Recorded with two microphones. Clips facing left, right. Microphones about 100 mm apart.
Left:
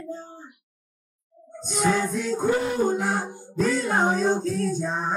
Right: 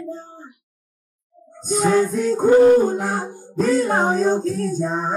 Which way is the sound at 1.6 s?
40° right (ahead or behind).